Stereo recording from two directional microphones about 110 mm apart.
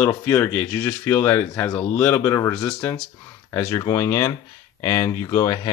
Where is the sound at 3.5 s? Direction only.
25° left (ahead or behind).